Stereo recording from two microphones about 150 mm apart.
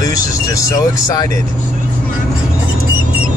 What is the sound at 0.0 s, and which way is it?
Speech, 20° left (ahead or behind).